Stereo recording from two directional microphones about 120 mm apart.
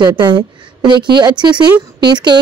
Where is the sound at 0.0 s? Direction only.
40° right (ahead or behind).